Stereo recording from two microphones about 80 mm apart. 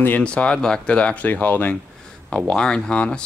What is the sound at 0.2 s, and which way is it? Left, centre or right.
Speech, centre.